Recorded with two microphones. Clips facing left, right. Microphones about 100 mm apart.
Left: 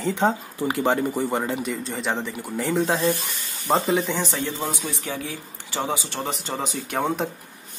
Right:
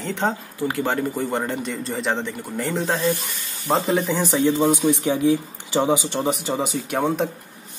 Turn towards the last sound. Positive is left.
turn(degrees=0)  # may be behind; listen again after turning